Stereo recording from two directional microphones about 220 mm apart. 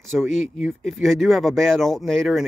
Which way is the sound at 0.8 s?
Centre (ahead or behind).